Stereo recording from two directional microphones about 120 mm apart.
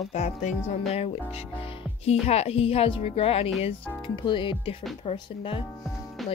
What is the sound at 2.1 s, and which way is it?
A woman's voice, 60° left (ahead or behind).